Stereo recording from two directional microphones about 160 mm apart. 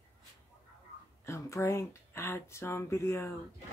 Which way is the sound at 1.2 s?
15° left (ahead or behind).